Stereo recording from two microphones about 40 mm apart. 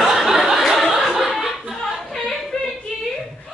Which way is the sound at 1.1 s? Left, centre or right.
Centre.